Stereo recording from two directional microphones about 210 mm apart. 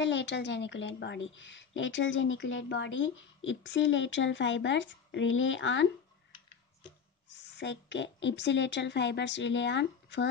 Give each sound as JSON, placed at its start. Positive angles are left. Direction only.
{"t": 0.0, "sound": "a woman's voice", "side_deg": 60}
{"t": 7.5, "sound": "a woman's voice", "side_deg": 60}